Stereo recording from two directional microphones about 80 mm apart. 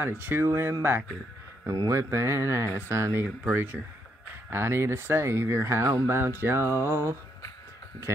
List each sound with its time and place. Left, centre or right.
0.0 s speech: right
1.9 s speech: right